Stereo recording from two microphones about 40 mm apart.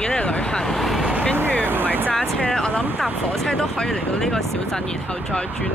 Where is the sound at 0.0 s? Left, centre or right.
Left.